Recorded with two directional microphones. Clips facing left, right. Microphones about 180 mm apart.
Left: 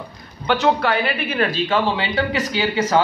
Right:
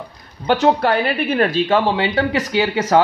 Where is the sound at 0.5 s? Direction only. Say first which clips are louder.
Right 3 dB; 45° right (ahead or behind).